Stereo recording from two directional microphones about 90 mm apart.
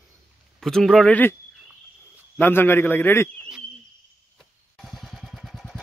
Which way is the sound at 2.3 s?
25° left (ahead or behind).